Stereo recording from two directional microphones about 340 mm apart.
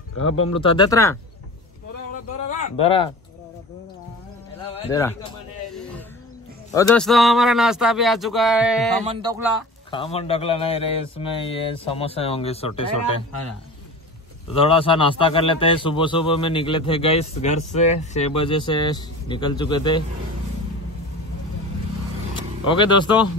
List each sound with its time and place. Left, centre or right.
0.5 s a man's voice: centre
2.8 s a man's voice: centre
4.6 s a sound: centre
6.7 s speech: centre
9.0 s speech: centre
9.8 s a man's voice: centre
14.5 s a man's voice: centre
22.3 s vehicle: centre